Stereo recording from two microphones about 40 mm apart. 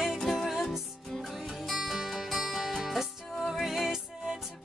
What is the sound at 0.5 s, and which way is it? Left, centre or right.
Music, centre.